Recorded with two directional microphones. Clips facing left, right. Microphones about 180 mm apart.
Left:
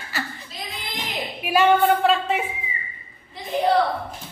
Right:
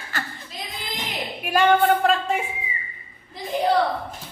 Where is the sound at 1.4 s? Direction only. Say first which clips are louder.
Left 1 dB; 5° left (ahead or behind).